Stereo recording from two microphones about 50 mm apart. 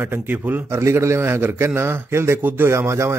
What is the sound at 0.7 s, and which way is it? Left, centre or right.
A man's voice, right.